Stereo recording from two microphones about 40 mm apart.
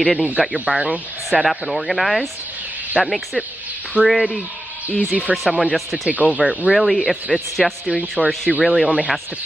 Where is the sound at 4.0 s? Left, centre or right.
Right.